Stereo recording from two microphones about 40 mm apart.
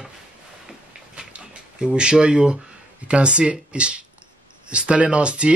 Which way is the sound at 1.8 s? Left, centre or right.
Right.